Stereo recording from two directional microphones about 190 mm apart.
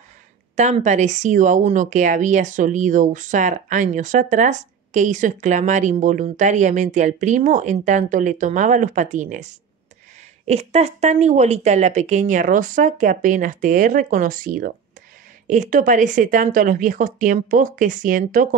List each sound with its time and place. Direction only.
0.6 s speech: 40° right (ahead or behind)